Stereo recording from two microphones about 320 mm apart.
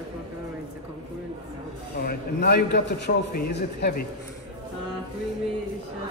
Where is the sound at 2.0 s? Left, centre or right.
Left.